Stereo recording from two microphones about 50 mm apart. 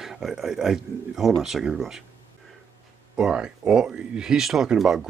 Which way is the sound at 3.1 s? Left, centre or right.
Centre.